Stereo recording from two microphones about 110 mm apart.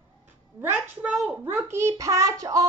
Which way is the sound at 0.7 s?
15° right (ahead or behind).